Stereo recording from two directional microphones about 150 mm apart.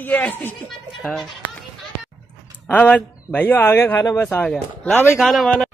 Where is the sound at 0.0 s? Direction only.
10° left (ahead or behind).